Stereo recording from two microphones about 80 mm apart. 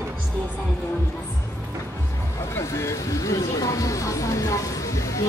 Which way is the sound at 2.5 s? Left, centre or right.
Left.